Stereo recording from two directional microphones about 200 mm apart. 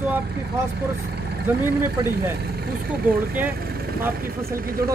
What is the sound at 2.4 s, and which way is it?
Speech, 50° right (ahead or behind).